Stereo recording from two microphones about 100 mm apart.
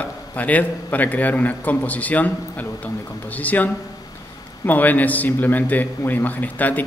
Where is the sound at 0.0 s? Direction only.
15° left (ahead or behind).